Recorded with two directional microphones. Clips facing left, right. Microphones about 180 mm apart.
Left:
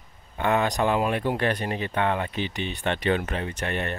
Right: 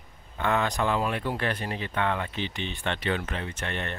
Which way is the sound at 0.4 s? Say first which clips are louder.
Left 3 dB; 15° left (ahead or behind).